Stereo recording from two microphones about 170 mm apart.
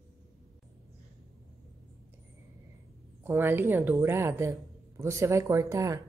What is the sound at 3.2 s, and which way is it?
Speech, 15° right (ahead or behind).